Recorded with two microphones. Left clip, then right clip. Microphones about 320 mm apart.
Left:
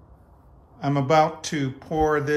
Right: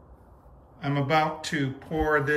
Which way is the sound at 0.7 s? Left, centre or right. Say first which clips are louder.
Left 5 dB; centre.